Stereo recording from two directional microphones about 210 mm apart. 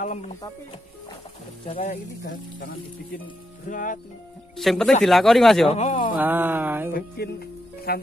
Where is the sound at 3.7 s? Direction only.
40° left (ahead or behind).